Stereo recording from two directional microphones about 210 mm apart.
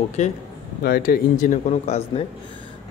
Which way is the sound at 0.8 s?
45° left (ahead or behind).